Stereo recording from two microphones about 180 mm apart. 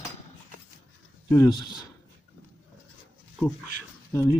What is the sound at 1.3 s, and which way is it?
Speech, 20° left (ahead or behind).